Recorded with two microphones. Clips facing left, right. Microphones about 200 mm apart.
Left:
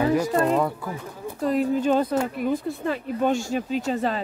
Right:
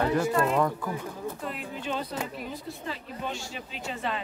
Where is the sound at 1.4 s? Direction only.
40° left (ahead or behind).